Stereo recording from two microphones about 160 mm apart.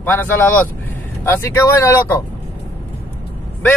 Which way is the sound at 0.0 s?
10° left (ahead or behind).